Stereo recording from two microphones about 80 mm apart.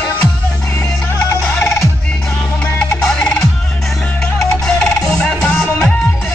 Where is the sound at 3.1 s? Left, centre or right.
Centre.